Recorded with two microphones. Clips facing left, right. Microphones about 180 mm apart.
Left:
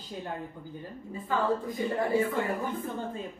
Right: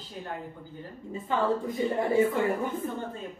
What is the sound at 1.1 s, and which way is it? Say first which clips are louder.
Speech: right 1 dB; 20° right (ahead or behind).